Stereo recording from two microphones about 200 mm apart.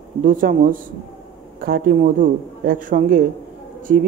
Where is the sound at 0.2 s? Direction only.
40° right (ahead or behind).